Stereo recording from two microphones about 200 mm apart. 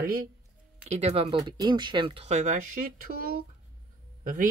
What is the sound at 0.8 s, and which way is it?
Speech, 30° right (ahead or behind).